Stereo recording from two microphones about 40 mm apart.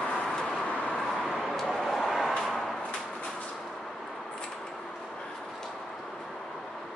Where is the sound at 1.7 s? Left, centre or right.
Centre.